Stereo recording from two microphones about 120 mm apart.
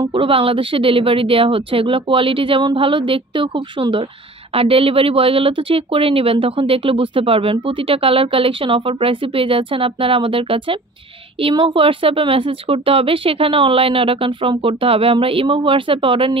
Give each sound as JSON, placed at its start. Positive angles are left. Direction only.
{"t": 0.1, "sound": "speech", "side_deg": -50}